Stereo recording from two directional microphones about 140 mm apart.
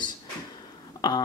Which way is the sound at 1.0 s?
30° left (ahead or behind).